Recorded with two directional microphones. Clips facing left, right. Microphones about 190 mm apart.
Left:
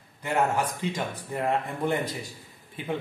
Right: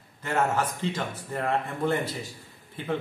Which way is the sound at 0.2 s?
15° left (ahead or behind).